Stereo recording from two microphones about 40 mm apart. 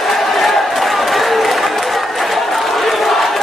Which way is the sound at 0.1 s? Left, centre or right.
Centre.